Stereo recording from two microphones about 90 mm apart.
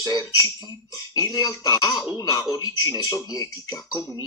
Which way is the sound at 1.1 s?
45° left (ahead or behind).